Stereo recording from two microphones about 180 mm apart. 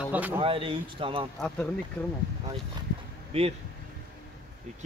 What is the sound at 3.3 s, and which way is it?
Speech, 30° right (ahead or behind).